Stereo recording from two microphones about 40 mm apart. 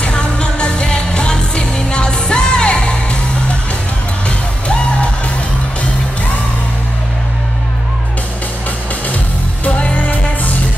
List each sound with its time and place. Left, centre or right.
0.0 s music: left
4.3 s music: left
9.7 s music: left